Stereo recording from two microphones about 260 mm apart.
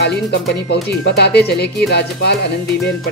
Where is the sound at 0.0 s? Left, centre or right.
Left.